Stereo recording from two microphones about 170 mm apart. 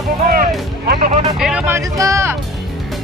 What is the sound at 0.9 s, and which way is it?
Speech, 50° right (ahead or behind).